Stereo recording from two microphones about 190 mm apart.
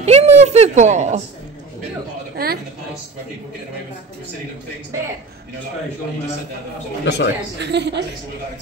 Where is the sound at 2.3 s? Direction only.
55° right (ahead or behind).